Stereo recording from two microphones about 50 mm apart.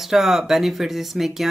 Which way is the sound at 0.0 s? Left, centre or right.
Centre.